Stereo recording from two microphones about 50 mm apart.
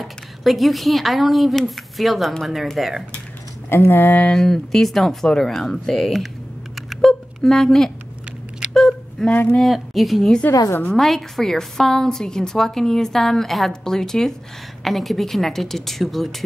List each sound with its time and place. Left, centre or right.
0.0 s a woman's voice: centre
3.6 s speech: left
4.3 s a woman's voice: centre
7.1 s a sound: centre
9.6 s a woman's voice: centre